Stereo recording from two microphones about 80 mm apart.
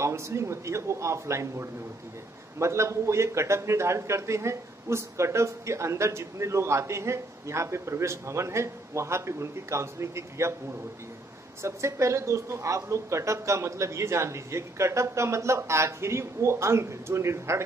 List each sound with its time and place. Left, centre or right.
0.0 s a man's voice: right
11.6 s a man's voice: right